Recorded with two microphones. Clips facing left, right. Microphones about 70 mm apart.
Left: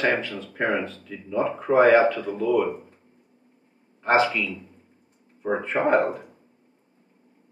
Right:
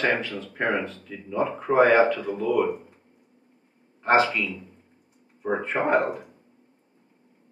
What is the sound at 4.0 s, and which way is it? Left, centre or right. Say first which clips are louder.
Speech: even; centre.